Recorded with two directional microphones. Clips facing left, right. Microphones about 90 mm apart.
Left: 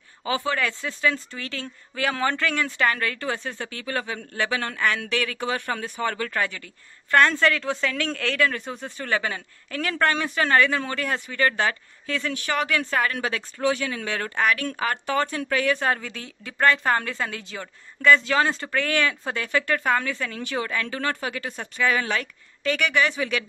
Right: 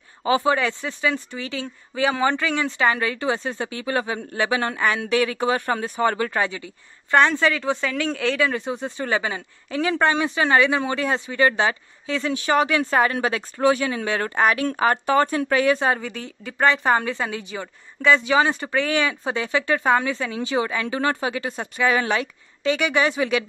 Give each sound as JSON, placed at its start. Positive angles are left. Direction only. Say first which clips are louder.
{"t": 0.2, "sound": "speech", "louder": "right 6 dB", "side_deg": -25}
{"t": 0.7, "sound": "a woman's voice", "louder": "right 1 dB", "side_deg": -10}
{"t": 6.1, "sound": "a woman's voice", "louder": "right 4 dB", "side_deg": -25}
{"t": 15.8, "sound": "a woman's voice", "louder": "right 3 dB", "side_deg": -10}